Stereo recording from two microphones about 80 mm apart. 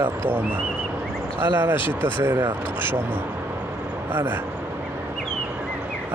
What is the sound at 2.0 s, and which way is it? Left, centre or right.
Speech, right.